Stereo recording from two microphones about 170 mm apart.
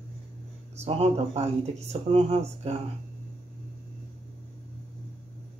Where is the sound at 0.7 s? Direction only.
40° right (ahead or behind).